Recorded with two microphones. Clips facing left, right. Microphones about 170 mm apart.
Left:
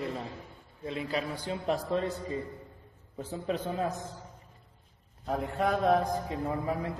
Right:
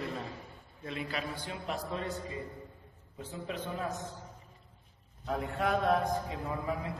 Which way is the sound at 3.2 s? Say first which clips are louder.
Left 6 dB; 35° left (ahead or behind).